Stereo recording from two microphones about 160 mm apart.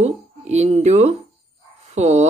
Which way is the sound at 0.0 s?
45° right (ahead or behind).